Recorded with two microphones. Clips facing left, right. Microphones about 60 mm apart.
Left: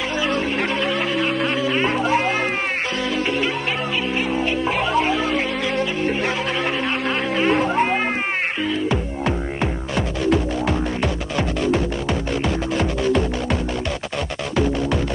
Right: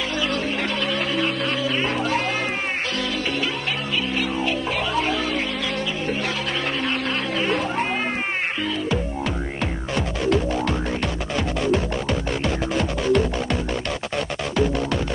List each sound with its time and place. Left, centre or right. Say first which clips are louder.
0.2 s music: left 4 dB; left
6.8 s cat: left 2 dB; left
9.9 s music: left 1 dB; centre